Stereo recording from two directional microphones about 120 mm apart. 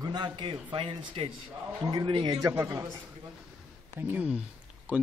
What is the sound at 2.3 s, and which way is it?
Speech, 25° right (ahead or behind).